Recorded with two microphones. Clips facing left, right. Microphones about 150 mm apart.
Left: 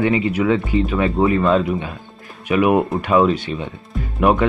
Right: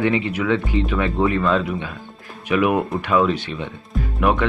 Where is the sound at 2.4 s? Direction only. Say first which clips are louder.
Left 2 dB; 40° left (ahead or behind).